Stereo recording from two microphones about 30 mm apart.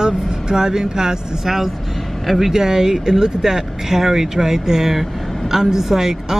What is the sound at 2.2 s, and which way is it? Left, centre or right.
Speech, centre.